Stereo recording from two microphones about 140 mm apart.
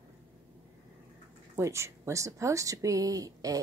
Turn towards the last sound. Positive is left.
turn(degrees=-25)  # may be behind; listen again after turning